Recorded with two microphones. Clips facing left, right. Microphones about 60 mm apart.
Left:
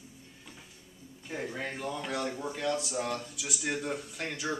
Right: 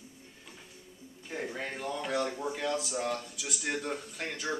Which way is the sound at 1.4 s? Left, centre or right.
Centre.